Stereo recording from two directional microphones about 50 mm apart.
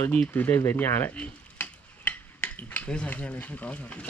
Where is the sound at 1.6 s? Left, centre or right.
Left.